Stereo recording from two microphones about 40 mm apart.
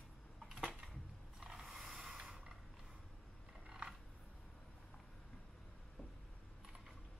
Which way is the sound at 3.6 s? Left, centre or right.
Right.